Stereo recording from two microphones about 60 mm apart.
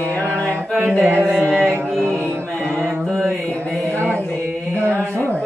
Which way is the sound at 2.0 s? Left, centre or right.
Right.